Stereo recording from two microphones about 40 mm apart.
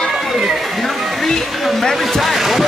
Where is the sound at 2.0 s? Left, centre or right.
Centre.